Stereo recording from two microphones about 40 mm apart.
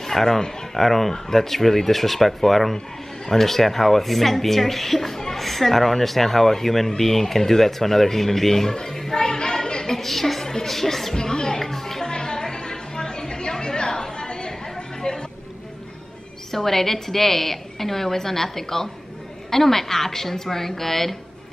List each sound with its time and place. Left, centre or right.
0.0 s a woman's voice: centre
11.1 s music: centre
15.0 s a sound: centre
16.5 s a woman's voice: centre